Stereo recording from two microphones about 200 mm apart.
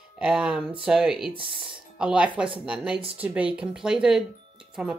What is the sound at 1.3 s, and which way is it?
Speech, 25° right (ahead or behind).